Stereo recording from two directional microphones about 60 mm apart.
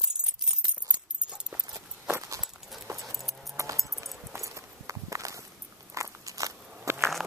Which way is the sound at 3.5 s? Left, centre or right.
Right.